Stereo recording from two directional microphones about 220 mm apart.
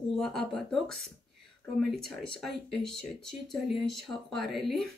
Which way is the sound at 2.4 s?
Centre (ahead or behind).